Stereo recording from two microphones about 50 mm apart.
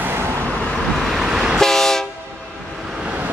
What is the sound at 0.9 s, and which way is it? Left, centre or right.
Vehicle, centre.